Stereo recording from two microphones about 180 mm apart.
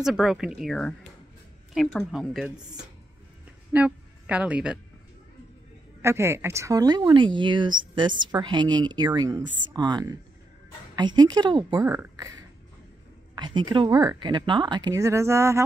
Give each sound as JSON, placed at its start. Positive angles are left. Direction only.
{"t": 0.0, "sound": "a woman's voice", "side_deg": 0}
{"t": 3.7, "sound": "a woman's voice", "side_deg": -5}
{"t": 6.0, "sound": "speech", "side_deg": -15}
{"t": 11.8, "sound": "speech", "side_deg": -15}